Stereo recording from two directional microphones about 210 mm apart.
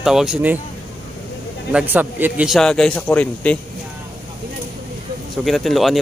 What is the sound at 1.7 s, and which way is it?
A man's voice, 5° right (ahead or behind).